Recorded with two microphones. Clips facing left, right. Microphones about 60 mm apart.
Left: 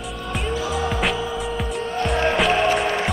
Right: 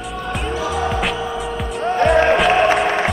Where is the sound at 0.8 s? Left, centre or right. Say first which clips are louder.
Right 2 dB; centre.